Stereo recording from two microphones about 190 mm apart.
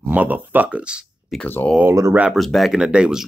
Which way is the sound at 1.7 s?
15° right (ahead or behind).